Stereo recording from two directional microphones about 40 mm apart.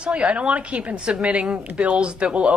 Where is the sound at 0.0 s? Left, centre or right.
Right.